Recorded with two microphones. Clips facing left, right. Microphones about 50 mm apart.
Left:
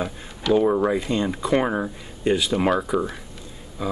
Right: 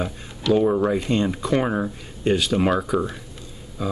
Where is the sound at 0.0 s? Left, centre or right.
Centre.